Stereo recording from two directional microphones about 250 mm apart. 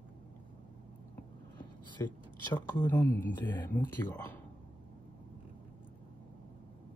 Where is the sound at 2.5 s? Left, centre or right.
Centre.